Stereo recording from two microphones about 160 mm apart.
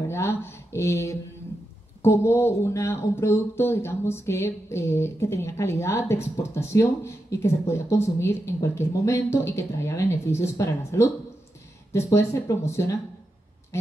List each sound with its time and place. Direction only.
0.1 s speech: 15° left (ahead or behind)